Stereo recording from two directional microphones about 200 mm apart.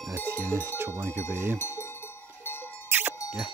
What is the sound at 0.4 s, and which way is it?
Speech, 10° right (ahead or behind).